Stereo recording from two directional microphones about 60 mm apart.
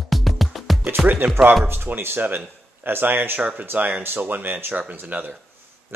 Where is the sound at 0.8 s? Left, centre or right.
Right.